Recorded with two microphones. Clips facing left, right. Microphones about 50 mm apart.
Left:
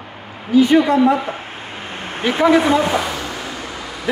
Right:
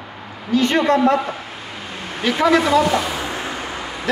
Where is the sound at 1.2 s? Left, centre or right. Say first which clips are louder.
Even; left.